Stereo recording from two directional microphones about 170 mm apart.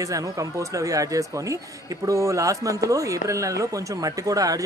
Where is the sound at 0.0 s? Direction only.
20° right (ahead or behind).